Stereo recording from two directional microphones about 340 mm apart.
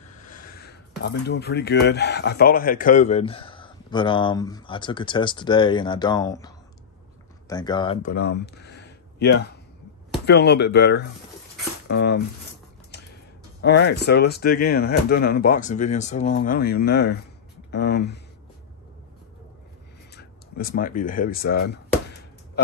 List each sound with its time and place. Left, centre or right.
0.3 s speech: left
13.6 s speech: left
20.2 s a sound: left